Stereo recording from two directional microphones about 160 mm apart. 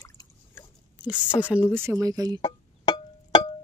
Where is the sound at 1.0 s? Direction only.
10° right (ahead or behind).